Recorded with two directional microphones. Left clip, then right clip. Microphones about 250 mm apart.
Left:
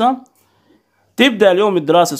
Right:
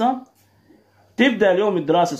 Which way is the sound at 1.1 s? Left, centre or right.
Left.